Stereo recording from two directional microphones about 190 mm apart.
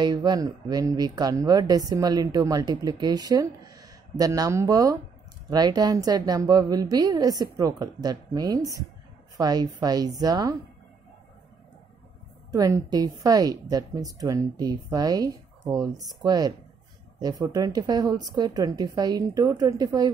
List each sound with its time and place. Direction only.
0.0 s speech: 20° right (ahead or behind)
12.4 s speech: 20° right (ahead or behind)